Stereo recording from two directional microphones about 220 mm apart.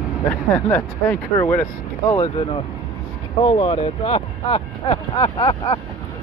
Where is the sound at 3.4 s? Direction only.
25° left (ahead or behind).